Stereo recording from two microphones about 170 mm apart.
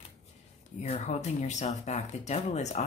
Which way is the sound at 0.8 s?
45° left (ahead or behind).